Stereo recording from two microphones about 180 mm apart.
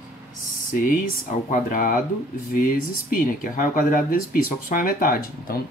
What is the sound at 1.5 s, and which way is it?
Speech, 50° left (ahead or behind).